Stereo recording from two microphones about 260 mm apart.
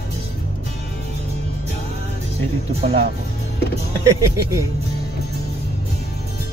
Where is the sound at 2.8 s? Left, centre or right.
Right.